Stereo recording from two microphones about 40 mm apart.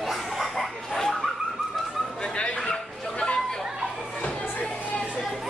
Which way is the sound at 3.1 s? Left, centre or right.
Left.